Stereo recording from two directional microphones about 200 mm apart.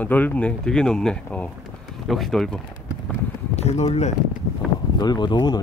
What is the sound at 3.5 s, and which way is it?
Speech, 35° left (ahead or behind).